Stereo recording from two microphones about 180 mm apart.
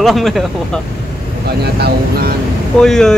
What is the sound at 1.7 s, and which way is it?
Speech, 65° right (ahead or behind).